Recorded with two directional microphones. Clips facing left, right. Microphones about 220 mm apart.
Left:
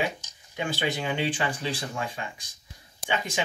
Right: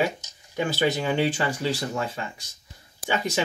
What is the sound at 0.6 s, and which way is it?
Speech, 40° right (ahead or behind).